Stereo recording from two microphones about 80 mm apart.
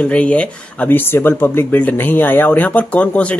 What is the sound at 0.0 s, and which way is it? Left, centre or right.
Speech, centre.